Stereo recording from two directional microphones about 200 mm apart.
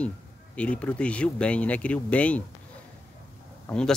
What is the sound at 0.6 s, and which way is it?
Speech, 5° left (ahead or behind).